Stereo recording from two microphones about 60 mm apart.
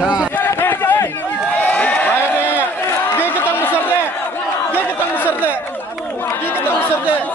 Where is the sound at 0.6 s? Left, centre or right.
Left.